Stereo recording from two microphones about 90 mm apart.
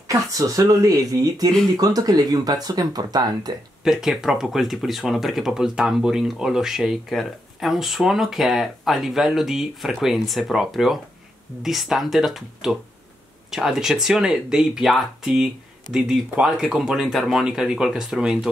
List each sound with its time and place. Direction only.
0.1 s speech: 40° right (ahead or behind)
3.8 s speech: 5° right (ahead or behind)